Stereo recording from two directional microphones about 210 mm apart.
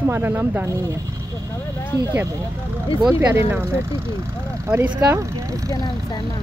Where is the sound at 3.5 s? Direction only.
10° right (ahead or behind).